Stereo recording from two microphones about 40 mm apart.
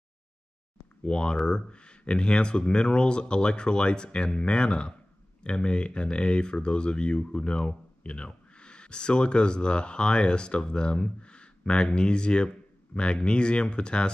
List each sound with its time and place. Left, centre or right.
1.0 s speech: left